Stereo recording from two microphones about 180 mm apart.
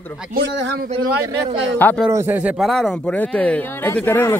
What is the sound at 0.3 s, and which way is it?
Speech, 75° right (ahead or behind).